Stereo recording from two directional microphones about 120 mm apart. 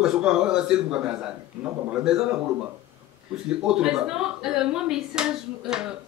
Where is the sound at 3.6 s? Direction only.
5° right (ahead or behind).